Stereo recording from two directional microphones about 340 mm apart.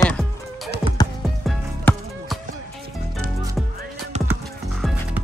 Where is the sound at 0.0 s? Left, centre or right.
Centre.